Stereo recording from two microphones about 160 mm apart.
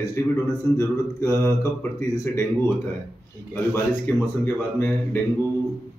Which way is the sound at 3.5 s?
10° left (ahead or behind).